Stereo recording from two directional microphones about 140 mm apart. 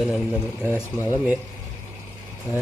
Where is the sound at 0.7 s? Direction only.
20° left (ahead or behind).